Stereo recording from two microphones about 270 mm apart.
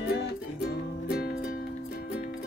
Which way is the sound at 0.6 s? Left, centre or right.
Left.